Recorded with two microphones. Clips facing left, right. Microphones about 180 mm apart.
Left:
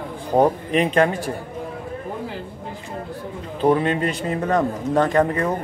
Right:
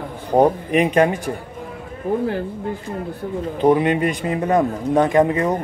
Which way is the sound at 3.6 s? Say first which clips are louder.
Right 2 dB; 15° right (ahead or behind).